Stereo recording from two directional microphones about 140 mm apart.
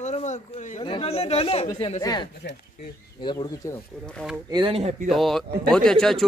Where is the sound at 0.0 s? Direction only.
55° left (ahead or behind).